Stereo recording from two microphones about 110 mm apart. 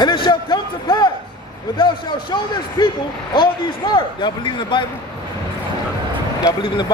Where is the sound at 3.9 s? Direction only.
45° left (ahead or behind).